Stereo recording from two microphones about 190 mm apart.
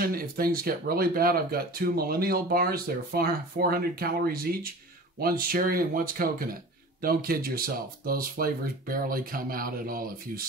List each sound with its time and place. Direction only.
0.0 s speech: 50° right (ahead or behind)